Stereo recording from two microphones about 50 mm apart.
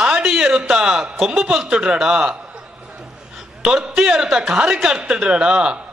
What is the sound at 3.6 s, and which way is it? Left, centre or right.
A man's voice, centre.